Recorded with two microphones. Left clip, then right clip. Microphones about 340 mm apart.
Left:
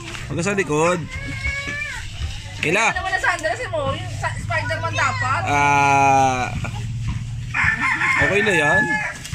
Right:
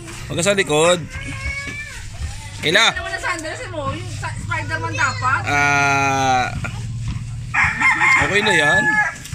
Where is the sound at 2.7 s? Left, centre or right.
Centre.